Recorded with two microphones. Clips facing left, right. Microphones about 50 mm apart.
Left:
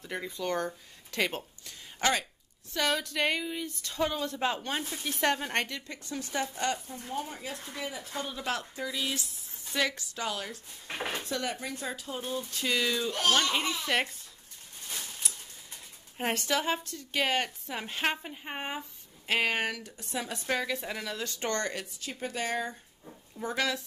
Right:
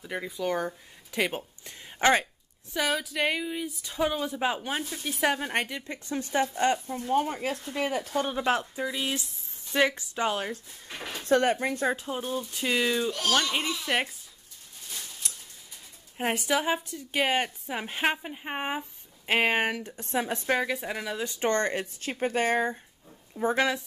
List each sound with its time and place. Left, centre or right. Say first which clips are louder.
0.0 s a woman's voice: right 3 dB; centre
1.6 s a sound: right 6 dB; right
2.7 s a woman's voice: right 1 dB; centre; by 6.8 s right
6.9 s speech: right 10 dB; right
7.7 s speech: right 10 dB; right
8.1 s speech: right 8 dB; right
8.5 s a woman's voice: right 6 dB; right
10.9 s a sound: left 4 dB; left
11.2 s speech: right 10 dB; right
12.0 s a woman's voice: right 4 dB; right
13.3 s a woman's voice: even; centre
15.2 s tick: even; centre
16.2 s a woman's voice: right 3 dB; centre; by 20.4 s right
20.4 s a woman's voice: right 4 dB; centre